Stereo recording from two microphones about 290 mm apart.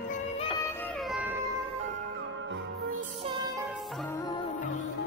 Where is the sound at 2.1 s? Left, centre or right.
Right.